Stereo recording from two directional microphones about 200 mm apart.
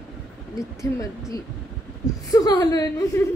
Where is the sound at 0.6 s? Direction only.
15° left (ahead or behind).